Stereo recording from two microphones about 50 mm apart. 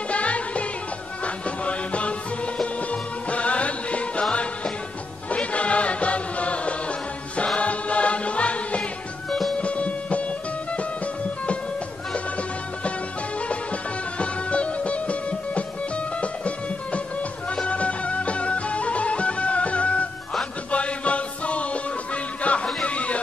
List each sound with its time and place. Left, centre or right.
0.1 s music: left
12.1 s music: left
22.8 s a sound: left